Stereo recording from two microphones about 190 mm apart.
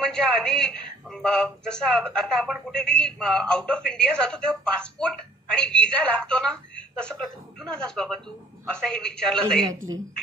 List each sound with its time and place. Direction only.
0.0 s a woman's voice: 5° left (ahead or behind)
9.7 s a woman's voice: 20° right (ahead or behind)